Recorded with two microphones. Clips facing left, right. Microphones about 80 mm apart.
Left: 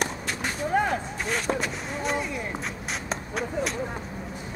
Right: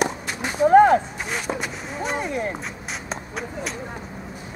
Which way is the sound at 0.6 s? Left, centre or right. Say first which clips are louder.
Right 12 dB; right.